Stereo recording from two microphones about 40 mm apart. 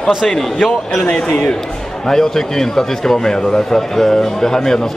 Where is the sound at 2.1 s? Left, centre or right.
Centre.